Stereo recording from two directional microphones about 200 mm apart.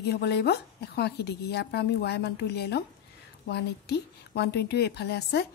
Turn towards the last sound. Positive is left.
turn(degrees=55)  # may be behind; listen again after turning